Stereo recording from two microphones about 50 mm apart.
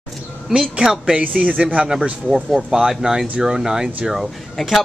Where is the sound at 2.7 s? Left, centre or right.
Centre.